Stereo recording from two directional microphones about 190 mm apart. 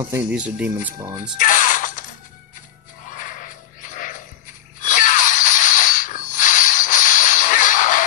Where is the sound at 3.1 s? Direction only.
45° left (ahead or behind).